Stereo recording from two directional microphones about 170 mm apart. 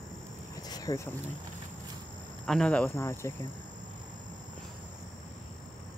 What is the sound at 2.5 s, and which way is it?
Speech, 5° left (ahead or behind).